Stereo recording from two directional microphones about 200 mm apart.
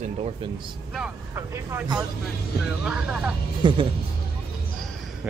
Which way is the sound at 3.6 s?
25° right (ahead or behind).